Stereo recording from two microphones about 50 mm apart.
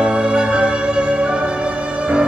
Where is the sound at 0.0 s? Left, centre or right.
Centre.